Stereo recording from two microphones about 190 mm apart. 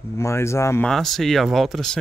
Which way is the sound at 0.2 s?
15° left (ahead or behind).